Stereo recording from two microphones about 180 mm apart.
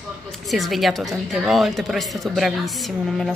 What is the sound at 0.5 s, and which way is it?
A woman's voice, centre (ahead or behind).